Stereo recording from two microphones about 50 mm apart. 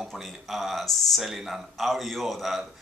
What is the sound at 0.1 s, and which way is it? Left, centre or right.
Speech, centre.